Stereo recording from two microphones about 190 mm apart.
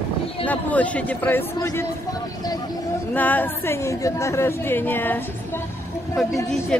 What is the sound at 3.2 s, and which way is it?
A woman's voice, 10° left (ahead or behind).